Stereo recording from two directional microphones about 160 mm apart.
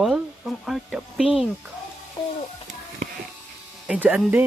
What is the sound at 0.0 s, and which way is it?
Speech, centre (ahead or behind).